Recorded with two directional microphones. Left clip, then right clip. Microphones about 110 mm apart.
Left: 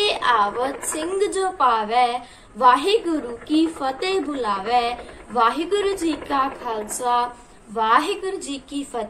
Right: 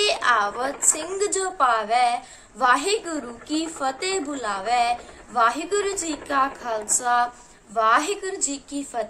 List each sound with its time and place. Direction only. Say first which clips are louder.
0.0 s a woman's voice: left 2 dB; 40° right (ahead or behind)